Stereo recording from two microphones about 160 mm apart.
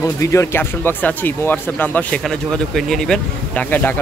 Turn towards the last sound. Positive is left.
turn(degrees=10)  # may be behind; listen again after turning